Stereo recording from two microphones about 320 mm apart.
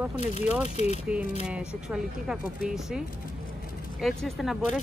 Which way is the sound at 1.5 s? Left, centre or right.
Centre.